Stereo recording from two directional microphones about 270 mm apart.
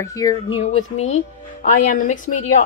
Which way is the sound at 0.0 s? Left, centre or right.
Centre.